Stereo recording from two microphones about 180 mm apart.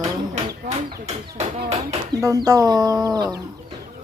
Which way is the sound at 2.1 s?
20° right (ahead or behind).